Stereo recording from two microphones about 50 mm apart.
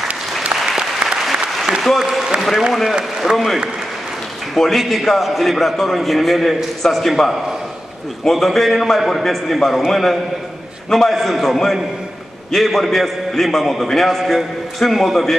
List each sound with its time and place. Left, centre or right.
2.0 s a man's voice: centre
3.0 s a man's voice: centre
3.3 s a man's voice: centre